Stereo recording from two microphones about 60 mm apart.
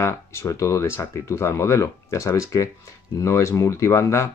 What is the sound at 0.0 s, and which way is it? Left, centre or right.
Speech, left.